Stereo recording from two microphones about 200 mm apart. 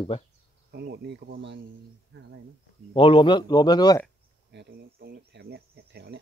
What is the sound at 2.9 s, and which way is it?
Speech, 25° left (ahead or behind).